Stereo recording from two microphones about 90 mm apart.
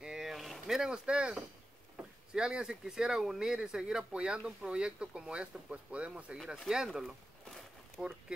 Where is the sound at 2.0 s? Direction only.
10° right (ahead or behind).